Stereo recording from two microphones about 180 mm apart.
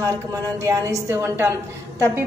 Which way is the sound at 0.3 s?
15° right (ahead or behind).